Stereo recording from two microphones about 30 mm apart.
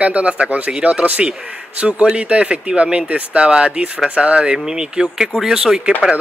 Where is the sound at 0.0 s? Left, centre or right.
Right.